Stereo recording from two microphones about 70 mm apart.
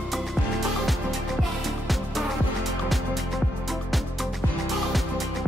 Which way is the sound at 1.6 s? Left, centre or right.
Centre.